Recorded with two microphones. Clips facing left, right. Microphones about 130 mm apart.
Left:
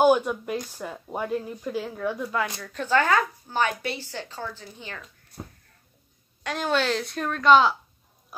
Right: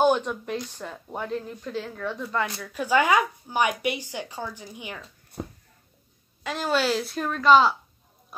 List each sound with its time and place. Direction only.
0.0 s speech: 5° left (ahead or behind)
2.6 s speech: 10° right (ahead or behind)
5.4 s a sound: 90° right
6.4 s a woman's voice: centre (ahead or behind)